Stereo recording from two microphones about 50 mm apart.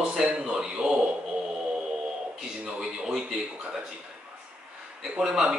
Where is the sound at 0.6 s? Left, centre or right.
Centre.